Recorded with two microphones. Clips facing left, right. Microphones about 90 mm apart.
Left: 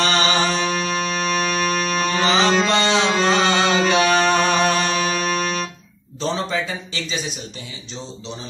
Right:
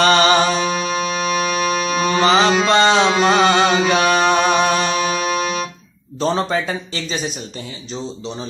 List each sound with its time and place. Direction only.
0.0 s music: 55° right (ahead or behind)
0.5 s music: 10° right (ahead or behind)
2.7 s music: 45° right (ahead or behind)
3.1 s music: 10° right (ahead or behind)
3.9 s music: 35° right (ahead or behind)
4.3 s music: 10° right (ahead or behind)
6.1 s speech: 45° right (ahead or behind)